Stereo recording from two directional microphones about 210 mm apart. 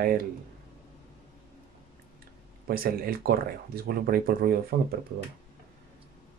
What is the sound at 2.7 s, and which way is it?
Speech, 45° right (ahead or behind).